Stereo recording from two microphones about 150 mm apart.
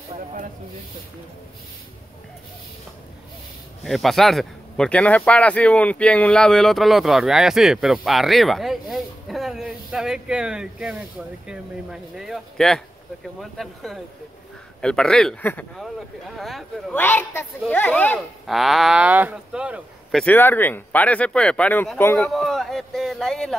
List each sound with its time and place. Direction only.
0.1 s snake: 55° right (ahead or behind)
3.8 s speech: centre (ahead or behind)
16.9 s speech: 15° left (ahead or behind)
18.5 s speech: centre (ahead or behind); by 22.3 s 15° left (ahead or behind)
22.3 s speech: centre (ahead or behind)